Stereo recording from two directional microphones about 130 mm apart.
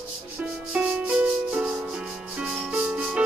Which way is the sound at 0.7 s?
10° right (ahead or behind).